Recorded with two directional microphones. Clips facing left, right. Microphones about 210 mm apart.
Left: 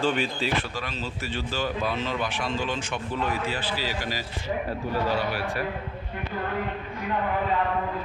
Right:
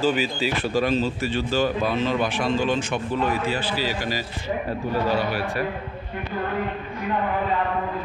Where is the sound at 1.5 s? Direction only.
45° right (ahead or behind).